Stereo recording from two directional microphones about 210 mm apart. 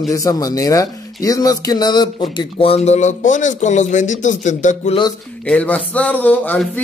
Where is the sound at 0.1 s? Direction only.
15° left (ahead or behind); by 4.9 s 35° left (ahead or behind).